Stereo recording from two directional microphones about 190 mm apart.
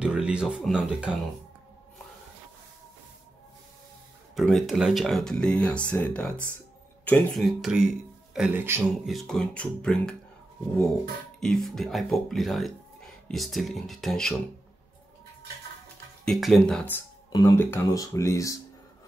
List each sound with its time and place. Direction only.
0.0 s speech: 5° right (ahead or behind)
4.4 s speech: centre (ahead or behind)
9.0 s speech: centre (ahead or behind)
11.3 s speech: centre (ahead or behind)
16.3 s speech: centre (ahead or behind)
17.3 s speech: 15° left (ahead or behind)